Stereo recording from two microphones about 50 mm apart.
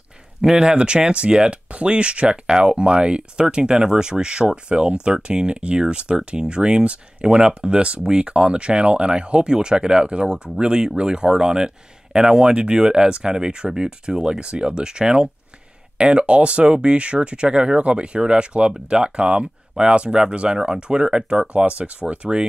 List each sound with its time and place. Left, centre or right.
0.4 s speech: centre